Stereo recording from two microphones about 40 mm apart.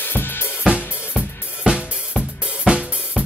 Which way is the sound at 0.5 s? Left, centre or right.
Right.